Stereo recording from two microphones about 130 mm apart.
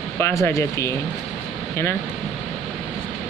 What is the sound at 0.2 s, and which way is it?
Speech, 25° left (ahead or behind).